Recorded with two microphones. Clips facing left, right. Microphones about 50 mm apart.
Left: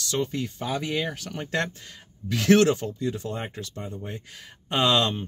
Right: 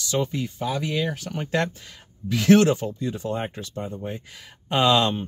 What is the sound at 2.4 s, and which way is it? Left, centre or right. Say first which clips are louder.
Speech: right 2 dB; centre.